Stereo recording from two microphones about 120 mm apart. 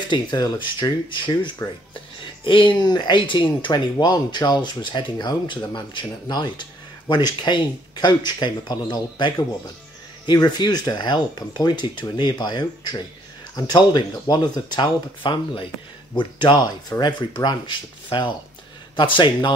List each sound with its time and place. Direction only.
0.1 s speech: 40° left (ahead or behind)